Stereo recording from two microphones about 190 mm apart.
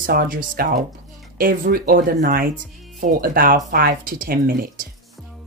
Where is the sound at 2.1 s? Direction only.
40° right (ahead or behind).